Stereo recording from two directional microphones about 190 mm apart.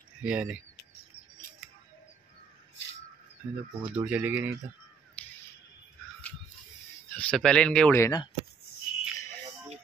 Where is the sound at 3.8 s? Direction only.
5° right (ahead or behind).